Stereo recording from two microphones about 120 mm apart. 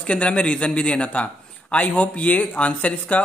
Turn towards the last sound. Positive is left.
turn(degrees=10)  # may be behind; listen again after turning